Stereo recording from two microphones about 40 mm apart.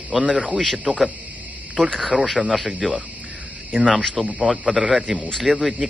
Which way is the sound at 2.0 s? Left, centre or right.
Centre.